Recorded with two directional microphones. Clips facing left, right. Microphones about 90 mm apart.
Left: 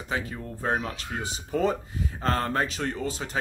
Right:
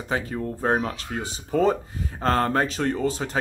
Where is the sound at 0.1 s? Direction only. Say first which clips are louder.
Right 5 dB; 40° right (ahead or behind).